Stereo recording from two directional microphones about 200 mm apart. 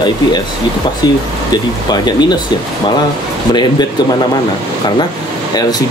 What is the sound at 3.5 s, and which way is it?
Speech, 20° left (ahead or behind).